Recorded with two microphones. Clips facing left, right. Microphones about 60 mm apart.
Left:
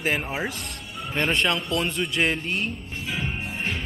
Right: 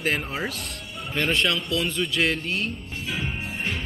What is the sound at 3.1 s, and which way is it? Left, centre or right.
Music, centre.